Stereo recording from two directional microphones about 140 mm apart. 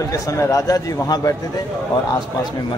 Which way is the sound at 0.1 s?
25° left (ahead or behind).